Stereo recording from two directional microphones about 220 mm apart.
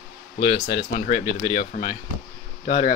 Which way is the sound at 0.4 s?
50° left (ahead or behind).